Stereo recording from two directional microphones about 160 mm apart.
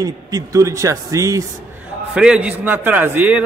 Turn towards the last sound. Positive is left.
turn(degrees=-10)  # may be behind; listen again after turning